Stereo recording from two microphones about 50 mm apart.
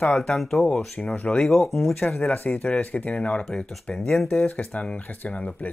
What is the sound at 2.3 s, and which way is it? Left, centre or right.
Speech, left.